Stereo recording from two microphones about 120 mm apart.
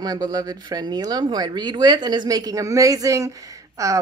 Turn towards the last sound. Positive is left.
turn(degrees=-30)  # may be behind; listen again after turning